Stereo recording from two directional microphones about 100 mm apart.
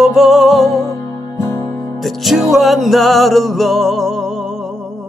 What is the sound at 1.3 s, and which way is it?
Music, 40° left (ahead or behind).